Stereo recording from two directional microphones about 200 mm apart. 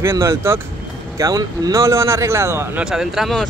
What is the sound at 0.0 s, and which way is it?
Speech, 15° right (ahead or behind).